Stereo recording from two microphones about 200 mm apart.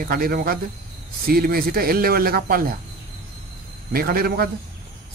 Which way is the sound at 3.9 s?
45° right (ahead or behind).